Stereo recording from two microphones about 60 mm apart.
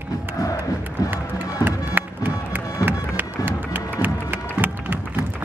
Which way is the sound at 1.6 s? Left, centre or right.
Right.